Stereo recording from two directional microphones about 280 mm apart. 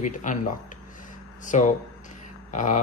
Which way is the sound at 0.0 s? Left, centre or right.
Left.